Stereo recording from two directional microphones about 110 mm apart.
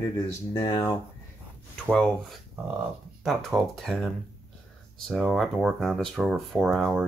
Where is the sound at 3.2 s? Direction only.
Centre (ahead or behind).